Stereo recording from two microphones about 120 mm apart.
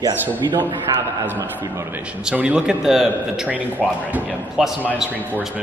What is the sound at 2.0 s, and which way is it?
A woman's voice, 10° right (ahead or behind).